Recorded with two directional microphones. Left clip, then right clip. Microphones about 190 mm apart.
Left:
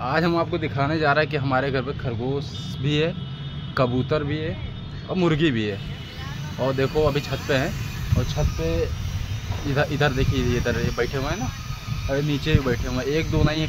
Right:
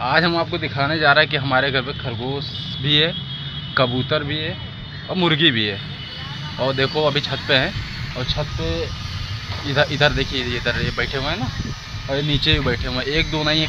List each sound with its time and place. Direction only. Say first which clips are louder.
0.0 s speech: right 4 dB; 10° left (ahead or behind)
6.8 s speech: right 3 dB; centre (ahead or behind)
9.8 s speech: right 5 dB; centre (ahead or behind)